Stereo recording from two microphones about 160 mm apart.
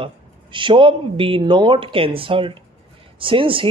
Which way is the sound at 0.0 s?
30° right (ahead or behind).